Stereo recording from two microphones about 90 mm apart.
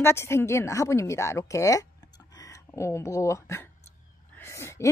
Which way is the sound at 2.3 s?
40° left (ahead or behind).